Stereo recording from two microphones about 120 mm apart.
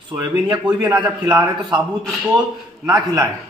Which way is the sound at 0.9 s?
35° right (ahead or behind).